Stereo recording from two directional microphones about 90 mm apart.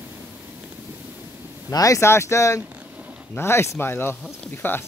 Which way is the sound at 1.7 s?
40° left (ahead or behind).